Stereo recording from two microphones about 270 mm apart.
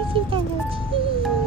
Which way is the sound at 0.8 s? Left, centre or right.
Centre.